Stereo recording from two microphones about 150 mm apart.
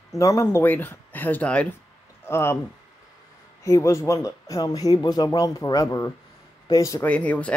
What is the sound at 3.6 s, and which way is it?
Speech, 20° left (ahead or behind).